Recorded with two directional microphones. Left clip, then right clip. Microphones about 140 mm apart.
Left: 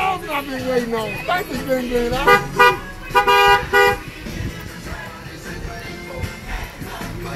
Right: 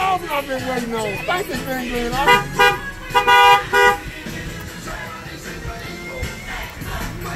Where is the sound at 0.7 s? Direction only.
15° right (ahead or behind).